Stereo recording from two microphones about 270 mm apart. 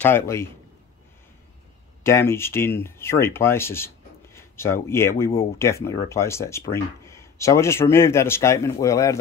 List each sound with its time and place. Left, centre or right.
0.0 s speech: centre
2.0 s speech: centre